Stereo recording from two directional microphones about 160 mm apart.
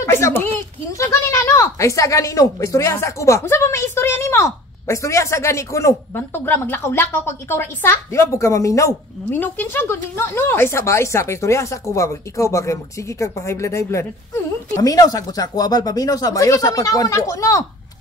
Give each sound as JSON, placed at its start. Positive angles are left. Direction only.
{"t": 0.0, "sound": "speech", "side_deg": 15}